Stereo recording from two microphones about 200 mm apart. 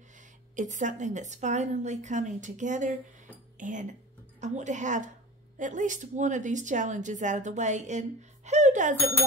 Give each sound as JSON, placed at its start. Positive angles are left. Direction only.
{"t": 0.6, "sound": "a woman's voice", "side_deg": -40}